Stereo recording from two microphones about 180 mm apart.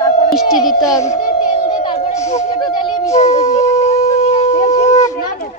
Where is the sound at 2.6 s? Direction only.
25° left (ahead or behind).